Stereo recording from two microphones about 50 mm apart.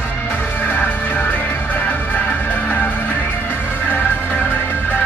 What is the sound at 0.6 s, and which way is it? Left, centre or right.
Music, left.